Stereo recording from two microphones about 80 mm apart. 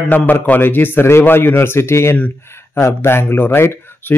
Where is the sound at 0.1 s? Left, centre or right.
Left.